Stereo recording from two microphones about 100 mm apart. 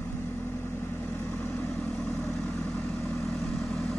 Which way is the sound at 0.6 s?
20° left (ahead or behind).